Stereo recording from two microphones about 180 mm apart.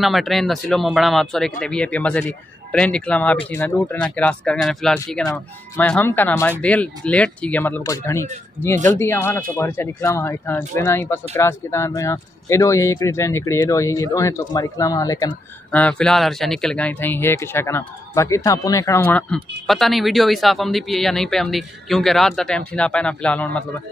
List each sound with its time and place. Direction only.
0.0 s speech: centre (ahead or behind); by 15.3 s 20° left (ahead or behind)
15.7 s speech: 5° left (ahead or behind)